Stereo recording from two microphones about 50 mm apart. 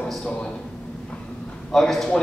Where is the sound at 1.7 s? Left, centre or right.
Centre.